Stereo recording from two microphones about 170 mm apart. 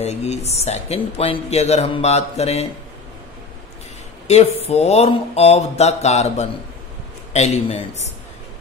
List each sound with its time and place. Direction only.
0.0 s speech: 40° left (ahead or behind)
4.3 s speech: 40° left (ahead or behind)